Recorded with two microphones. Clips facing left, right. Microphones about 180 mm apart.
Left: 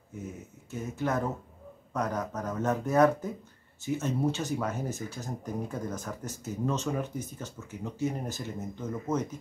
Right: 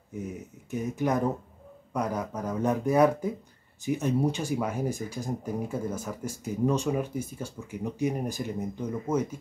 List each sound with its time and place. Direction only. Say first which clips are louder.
0.7 s speech: right 4 dB; 15° right (ahead or behind)